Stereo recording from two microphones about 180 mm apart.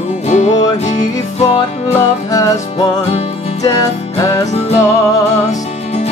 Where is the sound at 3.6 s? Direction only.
20° left (ahead or behind).